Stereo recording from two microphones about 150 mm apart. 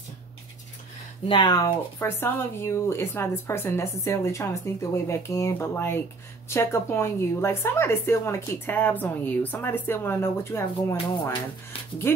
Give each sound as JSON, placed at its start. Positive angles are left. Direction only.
{"t": 1.2, "sound": "speech", "side_deg": 30}
{"t": 2.0, "sound": "a woman's voice", "side_deg": 15}